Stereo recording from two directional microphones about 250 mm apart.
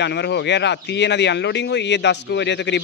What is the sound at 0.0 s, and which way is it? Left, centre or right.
Speech, left.